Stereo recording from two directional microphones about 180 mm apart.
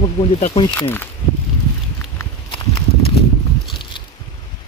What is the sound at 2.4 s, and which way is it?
Walk, 30° left (ahead or behind).